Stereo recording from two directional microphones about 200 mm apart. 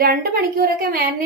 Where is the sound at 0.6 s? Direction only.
45° right (ahead or behind).